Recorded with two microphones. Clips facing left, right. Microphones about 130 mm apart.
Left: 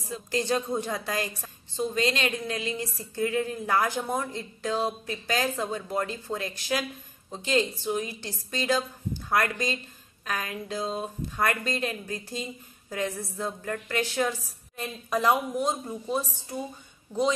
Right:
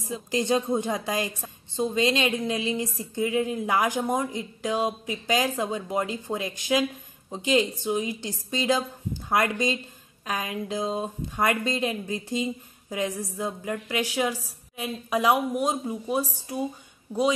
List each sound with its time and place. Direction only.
0.1 s a woman's voice: 20° right (ahead or behind)